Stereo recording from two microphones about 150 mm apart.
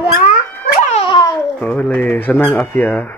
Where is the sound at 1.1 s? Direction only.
30° left (ahead or behind).